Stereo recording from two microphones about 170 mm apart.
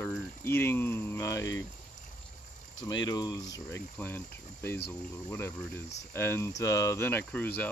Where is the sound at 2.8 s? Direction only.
25° left (ahead or behind).